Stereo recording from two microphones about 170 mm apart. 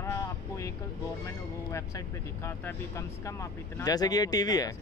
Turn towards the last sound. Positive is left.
turn(degrees=20)  # may be behind; listen again after turning